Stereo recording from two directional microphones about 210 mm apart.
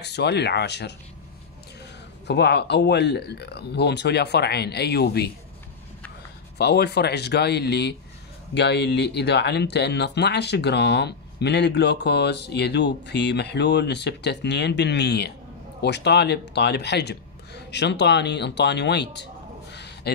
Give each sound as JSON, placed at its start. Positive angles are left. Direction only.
{"t": 0.0, "sound": "speech", "side_deg": 55}
{"t": 2.2, "sound": "speech", "side_deg": 55}
{"t": 6.6, "sound": "speech", "side_deg": 50}
{"t": 19.7, "sound": "a sound", "side_deg": 55}